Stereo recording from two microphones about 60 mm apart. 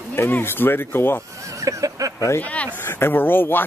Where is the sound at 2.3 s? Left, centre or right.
Left.